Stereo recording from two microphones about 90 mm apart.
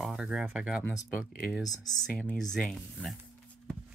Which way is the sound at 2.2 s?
5° left (ahead or behind).